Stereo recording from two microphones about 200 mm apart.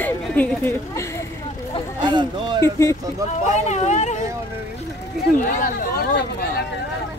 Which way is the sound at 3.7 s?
35° left (ahead or behind).